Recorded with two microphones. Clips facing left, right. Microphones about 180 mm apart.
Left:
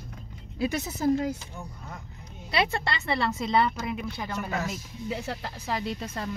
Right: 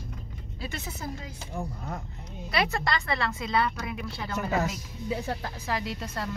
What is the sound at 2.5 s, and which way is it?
Speech, 30° left (ahead or behind).